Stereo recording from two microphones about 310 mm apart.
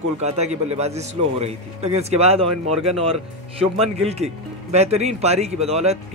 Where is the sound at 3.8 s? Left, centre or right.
Centre.